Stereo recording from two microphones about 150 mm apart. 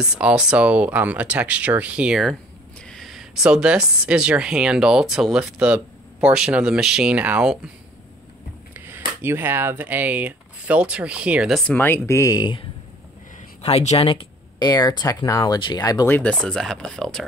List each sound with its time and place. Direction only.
0.0 s a woman's voice: 5° right (ahead or behind)
8.7 s speech: 15° right (ahead or behind)
11.7 s speech: 15° left (ahead or behind)
13.6 s speech: 45° left (ahead or behind)
14.6 s speech: 25° left (ahead or behind)
16.1 s a woman's voice: 10° left (ahead or behind)